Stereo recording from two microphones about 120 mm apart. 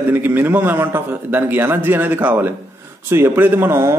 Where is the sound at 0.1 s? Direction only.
15° right (ahead or behind).